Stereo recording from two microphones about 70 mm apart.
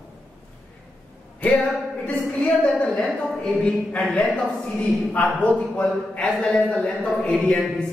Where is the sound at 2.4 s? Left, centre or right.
Centre.